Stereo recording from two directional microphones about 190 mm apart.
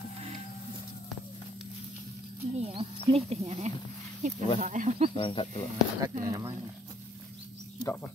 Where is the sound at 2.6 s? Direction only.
30° right (ahead or behind).